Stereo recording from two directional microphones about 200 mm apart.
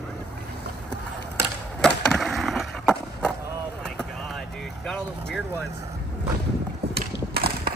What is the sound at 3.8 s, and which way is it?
Vehicle, 5° left (ahead or behind).